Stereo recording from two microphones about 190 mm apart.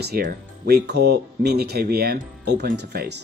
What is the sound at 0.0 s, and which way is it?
A man's voice, 50° right (ahead or behind).